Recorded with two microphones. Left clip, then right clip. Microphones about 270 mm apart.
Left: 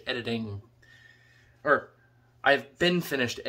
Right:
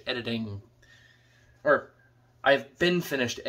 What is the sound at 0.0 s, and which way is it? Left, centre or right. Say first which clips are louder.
A man's voice: even; centre.